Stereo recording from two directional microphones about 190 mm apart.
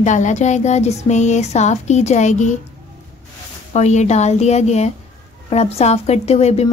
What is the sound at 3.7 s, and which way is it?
Speech, 35° left (ahead or behind).